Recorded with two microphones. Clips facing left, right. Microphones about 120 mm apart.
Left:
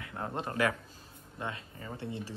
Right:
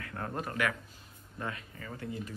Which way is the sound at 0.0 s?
20° left (ahead or behind).